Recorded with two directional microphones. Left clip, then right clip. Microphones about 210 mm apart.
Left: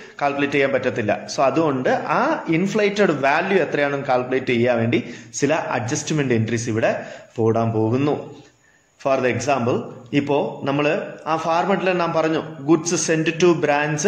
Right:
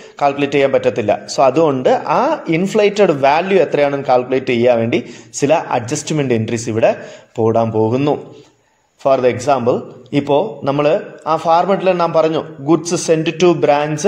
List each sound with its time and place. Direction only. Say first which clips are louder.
0.2 s a man's voice: right 6 dB; 35° right (ahead or behind)